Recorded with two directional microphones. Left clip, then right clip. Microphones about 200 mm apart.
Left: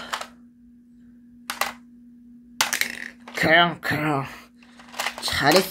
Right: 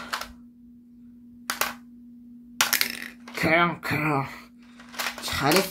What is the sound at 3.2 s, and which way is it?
Speech, 25° left (ahead or behind).